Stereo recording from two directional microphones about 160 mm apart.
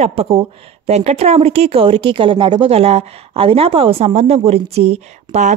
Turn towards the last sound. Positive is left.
turn(degrees=-45)  # may be behind; listen again after turning